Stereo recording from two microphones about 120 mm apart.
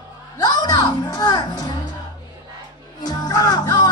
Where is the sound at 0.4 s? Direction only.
35° left (ahead or behind).